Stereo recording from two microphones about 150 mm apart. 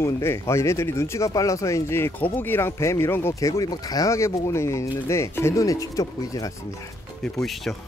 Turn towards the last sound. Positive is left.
turn(degrees=0)  # may be behind; listen again after turning